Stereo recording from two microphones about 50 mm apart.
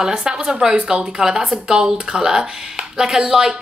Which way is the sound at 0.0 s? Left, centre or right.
Centre.